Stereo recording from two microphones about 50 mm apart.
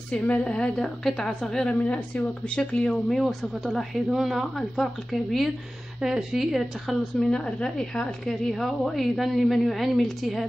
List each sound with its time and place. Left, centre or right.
0.1 s a woman's voice: left
1.8 s a woman's voice: left
3.1 s a woman's voice: centre
5.9 s speech: centre
7.2 s a woman's voice: centre